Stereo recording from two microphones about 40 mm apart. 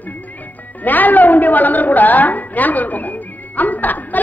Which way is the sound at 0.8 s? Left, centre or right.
Left.